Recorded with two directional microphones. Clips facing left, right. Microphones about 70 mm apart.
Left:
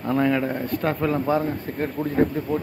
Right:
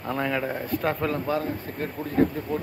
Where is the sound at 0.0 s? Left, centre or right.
Centre.